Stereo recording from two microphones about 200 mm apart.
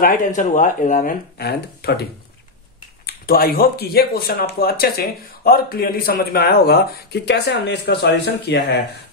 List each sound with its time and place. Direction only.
0.0 s speech: 40° left (ahead or behind)
3.1 s speech: 50° left (ahead or behind)